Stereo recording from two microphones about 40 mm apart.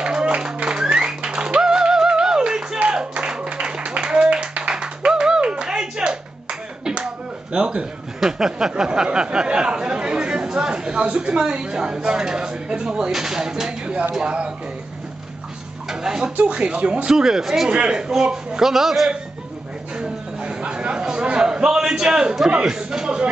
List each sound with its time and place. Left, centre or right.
0.0 s music: right
7.5 s a man's voice: right
8.2 s a woman's voice: centre
15.9 s speech: centre
16.4 s a woman's voice: right
17.1 s a man's voice: centre
17.6 s a man's voice: right; by 19.1 s centre
20.0 s a sound: right